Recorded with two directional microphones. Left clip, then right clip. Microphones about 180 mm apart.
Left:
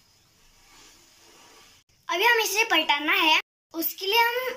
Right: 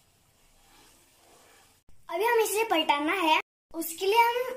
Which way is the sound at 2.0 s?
20° right (ahead or behind).